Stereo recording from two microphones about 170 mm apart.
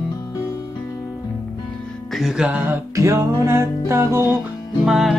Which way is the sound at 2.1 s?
Centre (ahead or behind).